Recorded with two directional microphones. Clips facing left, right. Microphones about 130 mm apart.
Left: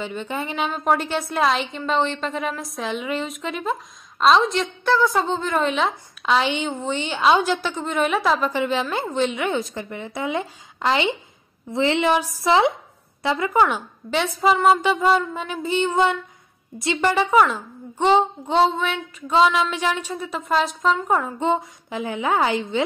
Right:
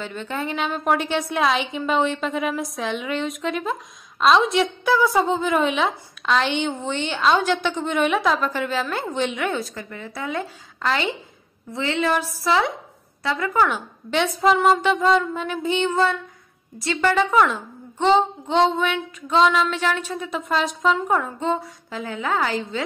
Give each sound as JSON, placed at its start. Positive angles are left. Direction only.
{"t": 0.0, "sound": "a woman's voice", "side_deg": 10}
{"t": 9.8, "sound": "a woman's voice", "side_deg": 25}
{"t": 11.7, "sound": "a woman's voice", "side_deg": 30}
{"t": 12.0, "sound": "a woman's voice", "side_deg": 15}
{"t": 13.5, "sound": "a woman's voice", "side_deg": 15}
{"t": 21.4, "sound": "a woman's voice", "side_deg": 15}